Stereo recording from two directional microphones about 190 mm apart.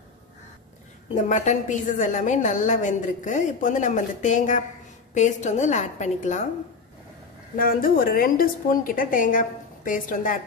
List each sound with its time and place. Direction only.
1.1 s a woman's voice: 40° left (ahead or behind)
7.5 s a woman's voice: 50° left (ahead or behind)